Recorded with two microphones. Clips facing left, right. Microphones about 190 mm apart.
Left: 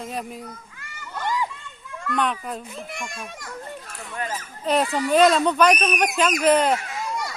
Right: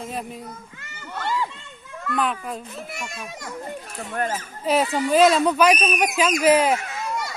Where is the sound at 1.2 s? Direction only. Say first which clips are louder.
Even; 15° left (ahead or behind).